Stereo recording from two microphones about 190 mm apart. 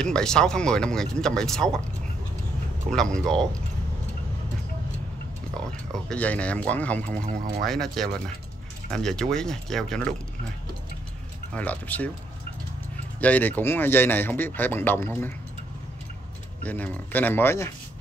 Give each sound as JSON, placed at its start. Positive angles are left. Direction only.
{"t": 0.0, "sound": "speech", "side_deg": 5}
{"t": 2.9, "sound": "speech", "side_deg": 5}
{"t": 6.0, "sound": "speech", "side_deg": 5}
{"t": 7.2, "sound": "speech", "side_deg": -40}
{"t": 7.6, "sound": "speech", "side_deg": 0}
{"t": 11.5, "sound": "speech", "side_deg": 10}
{"t": 13.2, "sound": "speech", "side_deg": 10}
{"t": 16.6, "sound": "speech", "side_deg": 10}